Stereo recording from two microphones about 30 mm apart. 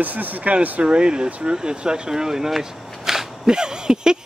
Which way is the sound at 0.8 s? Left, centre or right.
Right.